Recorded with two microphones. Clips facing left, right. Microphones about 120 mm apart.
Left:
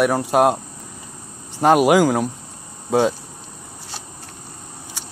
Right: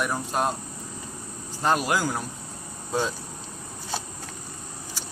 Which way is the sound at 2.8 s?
70° left (ahead or behind).